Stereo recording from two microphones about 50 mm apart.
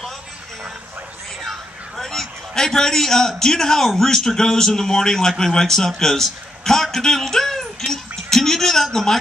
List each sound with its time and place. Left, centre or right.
1.4 s a man's voice: centre